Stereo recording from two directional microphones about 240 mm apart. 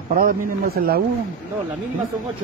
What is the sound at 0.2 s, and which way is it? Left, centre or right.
Speech, right.